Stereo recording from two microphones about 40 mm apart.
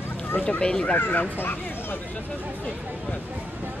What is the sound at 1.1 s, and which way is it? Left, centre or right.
Speech, left.